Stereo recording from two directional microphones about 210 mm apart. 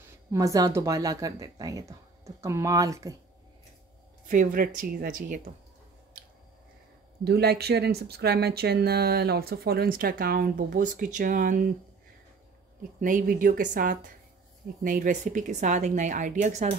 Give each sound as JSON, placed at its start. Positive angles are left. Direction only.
{"t": 0.3, "sound": "speech", "side_deg": -15}
{"t": 4.3, "sound": "a woman's voice", "side_deg": -40}
{"t": 7.2, "sound": "speech", "side_deg": -50}
{"t": 13.0, "sound": "a woman's voice", "side_deg": -40}